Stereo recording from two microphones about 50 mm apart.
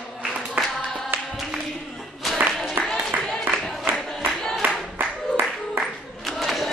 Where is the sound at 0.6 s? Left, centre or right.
Right.